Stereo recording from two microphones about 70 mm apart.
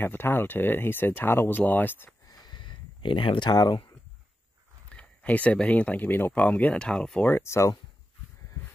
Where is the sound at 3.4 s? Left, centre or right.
Left.